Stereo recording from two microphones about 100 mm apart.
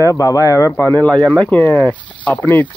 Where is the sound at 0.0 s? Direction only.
35° left (ahead or behind).